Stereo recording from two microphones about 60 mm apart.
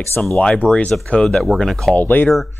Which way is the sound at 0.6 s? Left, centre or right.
Centre.